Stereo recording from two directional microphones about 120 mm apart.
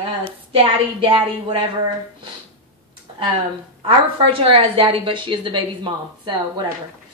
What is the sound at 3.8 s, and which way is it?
A woman's voice, 45° right (ahead or behind).